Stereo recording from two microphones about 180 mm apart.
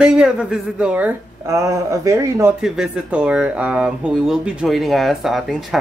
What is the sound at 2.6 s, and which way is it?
Speech, 5° right (ahead or behind).